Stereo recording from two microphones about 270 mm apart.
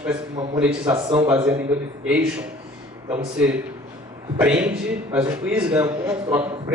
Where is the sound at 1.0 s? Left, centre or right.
Centre.